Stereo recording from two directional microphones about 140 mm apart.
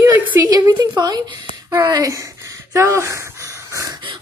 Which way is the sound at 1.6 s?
30° right (ahead or behind).